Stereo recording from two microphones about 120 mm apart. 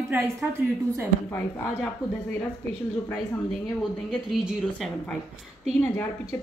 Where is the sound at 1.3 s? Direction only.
15° left (ahead or behind).